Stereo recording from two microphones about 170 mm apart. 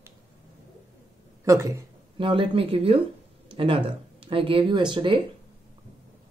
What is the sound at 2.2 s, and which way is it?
Speech, 30° right (ahead or behind).